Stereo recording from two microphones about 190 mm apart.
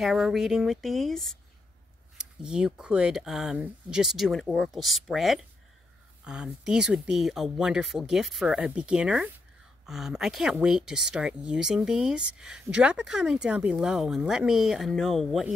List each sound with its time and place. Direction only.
0.0 s speech: centre (ahead or behind)